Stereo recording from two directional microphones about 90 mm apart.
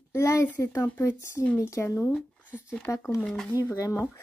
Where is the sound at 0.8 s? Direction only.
25° left (ahead or behind).